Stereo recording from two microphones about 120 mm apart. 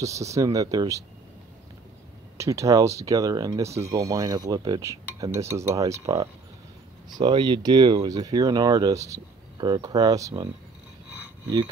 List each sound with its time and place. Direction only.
0.0 s speech: 25° right (ahead or behind)
2.3 s speech: 25° right (ahead or behind)